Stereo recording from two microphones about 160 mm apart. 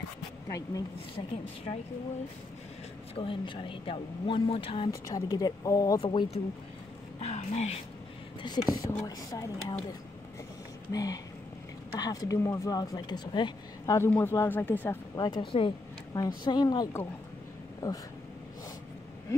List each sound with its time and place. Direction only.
0.5 s speech: 20° left (ahead or behind)
3.2 s speech: 30° left (ahead or behind)
5.1 s speech: 25° left (ahead or behind)
5.9 s speech: 35° left (ahead or behind)
7.2 s a sound: 40° left (ahead or behind)
8.4 s speech: 25° left (ahead or behind)
10.9 s speech: 20° left (ahead or behind)
15.1 s speech: 30° left (ahead or behind)